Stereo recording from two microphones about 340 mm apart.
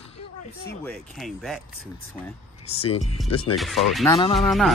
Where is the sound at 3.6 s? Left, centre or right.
Centre.